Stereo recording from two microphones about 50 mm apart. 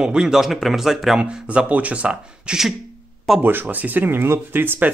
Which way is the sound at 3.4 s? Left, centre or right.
Right.